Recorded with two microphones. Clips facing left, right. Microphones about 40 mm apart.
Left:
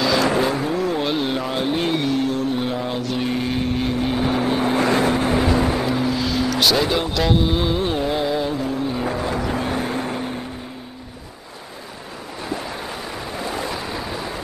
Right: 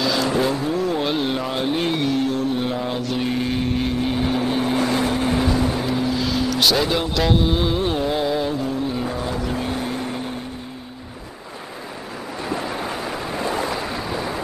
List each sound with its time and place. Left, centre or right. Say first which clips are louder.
0.0 s vehicle: left 2 dB; centre
5.9 s vehicle: left 1 dB; centre